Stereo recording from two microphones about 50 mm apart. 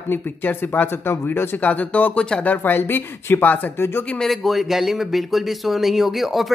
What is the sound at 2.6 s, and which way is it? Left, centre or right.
Speech, left.